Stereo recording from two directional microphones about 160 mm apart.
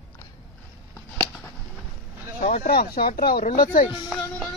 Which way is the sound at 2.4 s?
60° left (ahead or behind).